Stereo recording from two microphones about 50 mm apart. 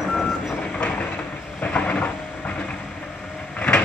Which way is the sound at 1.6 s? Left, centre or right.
Left.